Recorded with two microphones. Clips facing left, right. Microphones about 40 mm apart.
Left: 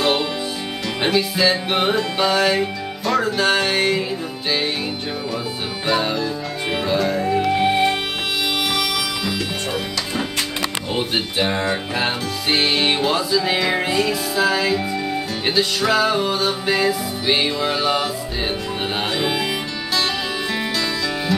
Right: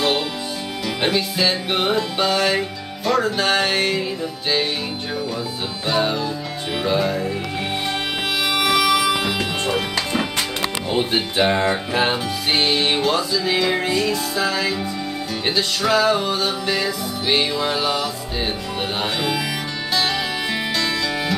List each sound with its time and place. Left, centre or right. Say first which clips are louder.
1.0 s music: left 2 dB; centre
6.8 s music: right 1 dB; centre
8.6 s music: right 5 dB; right
12.4 s music: left 1 dB; centre
20.5 s music: right 1 dB; centre